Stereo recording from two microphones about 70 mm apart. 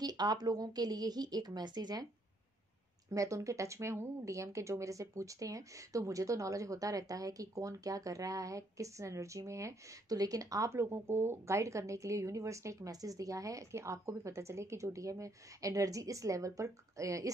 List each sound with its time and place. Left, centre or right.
0.0 s a woman's voice: right
3.1 s speech: right